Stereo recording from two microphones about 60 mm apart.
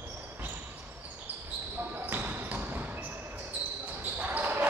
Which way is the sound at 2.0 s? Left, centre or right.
Right.